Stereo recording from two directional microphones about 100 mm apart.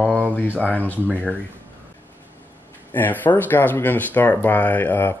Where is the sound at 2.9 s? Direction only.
20° left (ahead or behind).